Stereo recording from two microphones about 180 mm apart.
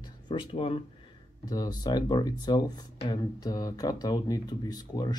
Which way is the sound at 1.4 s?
20° left (ahead or behind).